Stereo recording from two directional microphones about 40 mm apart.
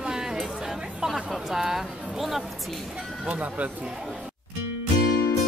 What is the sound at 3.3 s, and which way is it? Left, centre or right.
Speech, right.